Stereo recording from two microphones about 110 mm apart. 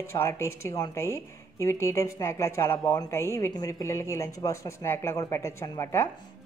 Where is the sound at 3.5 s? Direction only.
35° left (ahead or behind).